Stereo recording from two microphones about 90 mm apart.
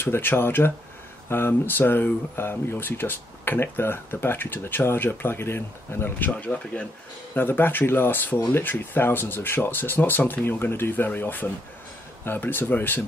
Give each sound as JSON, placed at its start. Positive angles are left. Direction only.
{"t": 0.0, "sound": "speech", "side_deg": 25}